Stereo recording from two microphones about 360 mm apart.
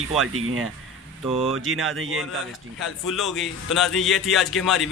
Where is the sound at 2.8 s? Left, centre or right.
Centre.